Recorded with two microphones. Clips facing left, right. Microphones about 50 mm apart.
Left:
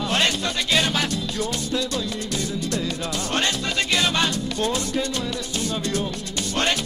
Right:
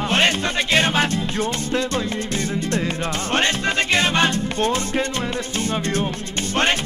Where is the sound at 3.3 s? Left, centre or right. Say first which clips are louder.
Right 5 dB; right.